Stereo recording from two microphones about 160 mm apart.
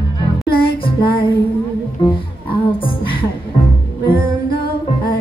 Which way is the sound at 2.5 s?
35° left (ahead or behind).